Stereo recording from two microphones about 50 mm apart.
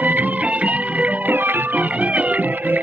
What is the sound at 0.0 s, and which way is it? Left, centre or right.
Music, right.